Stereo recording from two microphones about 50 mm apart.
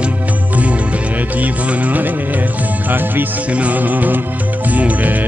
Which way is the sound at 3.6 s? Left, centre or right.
Right.